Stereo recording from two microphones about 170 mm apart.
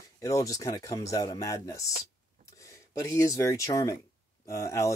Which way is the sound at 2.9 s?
15° left (ahead or behind).